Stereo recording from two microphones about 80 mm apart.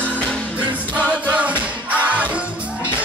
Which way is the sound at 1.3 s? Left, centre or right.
Centre.